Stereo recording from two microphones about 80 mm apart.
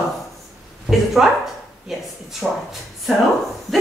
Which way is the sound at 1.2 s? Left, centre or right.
Centre.